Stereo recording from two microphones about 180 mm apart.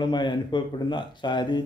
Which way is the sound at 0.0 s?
25° left (ahead or behind).